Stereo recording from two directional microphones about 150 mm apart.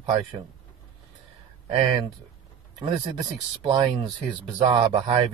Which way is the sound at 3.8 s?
30° right (ahead or behind).